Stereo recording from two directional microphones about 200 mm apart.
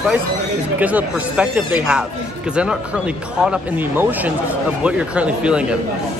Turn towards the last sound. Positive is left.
turn(degrees=-5)  # may be behind; listen again after turning